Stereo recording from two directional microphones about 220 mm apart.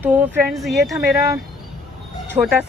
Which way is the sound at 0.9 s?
15° right (ahead or behind).